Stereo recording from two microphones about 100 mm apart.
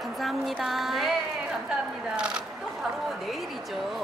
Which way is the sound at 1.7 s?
10° right (ahead or behind).